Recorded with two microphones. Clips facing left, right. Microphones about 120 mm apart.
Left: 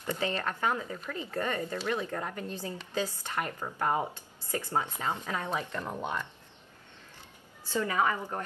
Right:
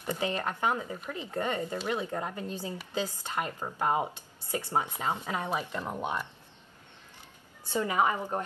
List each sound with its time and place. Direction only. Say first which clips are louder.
0.0 s speech: right 1 dB; 15° right (ahead or behind)
7.7 s a woman's voice: right 1 dB; 15° right (ahead or behind)